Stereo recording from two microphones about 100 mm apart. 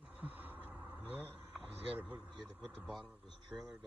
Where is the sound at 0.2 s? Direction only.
15° right (ahead or behind).